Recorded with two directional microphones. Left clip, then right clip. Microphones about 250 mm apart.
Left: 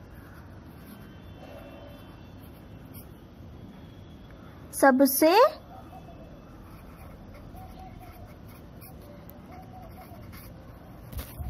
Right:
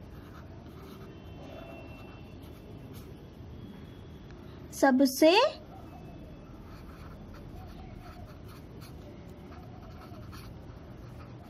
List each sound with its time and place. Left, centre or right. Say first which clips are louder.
4.7 s a woman's voice: left 4 dB; centre